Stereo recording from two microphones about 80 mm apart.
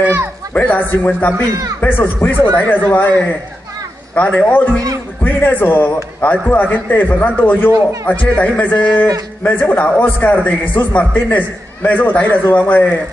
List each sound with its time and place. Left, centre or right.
0.6 s a man's voice: centre